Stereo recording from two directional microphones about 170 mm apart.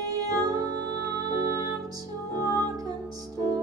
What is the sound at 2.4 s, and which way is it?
Music, 20° right (ahead or behind).